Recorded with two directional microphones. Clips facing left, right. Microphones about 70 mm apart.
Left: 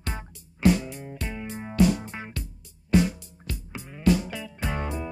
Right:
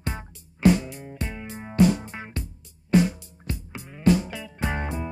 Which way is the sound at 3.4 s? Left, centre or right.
Right.